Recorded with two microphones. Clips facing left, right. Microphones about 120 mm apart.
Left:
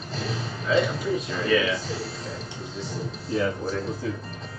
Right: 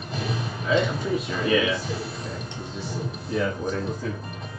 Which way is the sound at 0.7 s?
Centre (ahead or behind).